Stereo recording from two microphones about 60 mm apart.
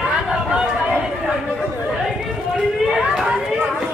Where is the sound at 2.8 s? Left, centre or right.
Centre.